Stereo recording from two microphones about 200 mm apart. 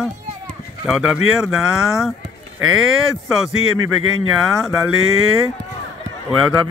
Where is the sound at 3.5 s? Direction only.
90° right.